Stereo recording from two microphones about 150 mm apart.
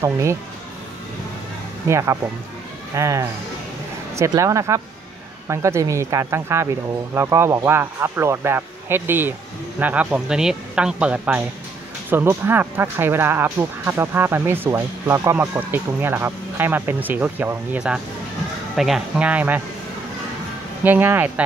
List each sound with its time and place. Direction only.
0.0 s speech: 20° right (ahead or behind)
1.9 s speech: 20° right (ahead or behind)
20.8 s speech: 10° right (ahead or behind)